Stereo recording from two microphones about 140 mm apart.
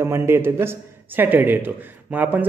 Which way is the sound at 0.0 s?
20° right (ahead or behind).